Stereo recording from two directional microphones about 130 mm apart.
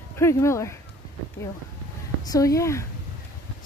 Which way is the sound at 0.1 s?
20° left (ahead or behind).